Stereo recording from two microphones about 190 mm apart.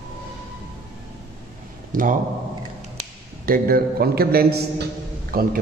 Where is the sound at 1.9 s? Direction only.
45° right (ahead or behind).